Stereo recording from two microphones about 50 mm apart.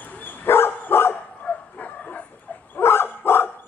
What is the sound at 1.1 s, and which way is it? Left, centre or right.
Dog, left.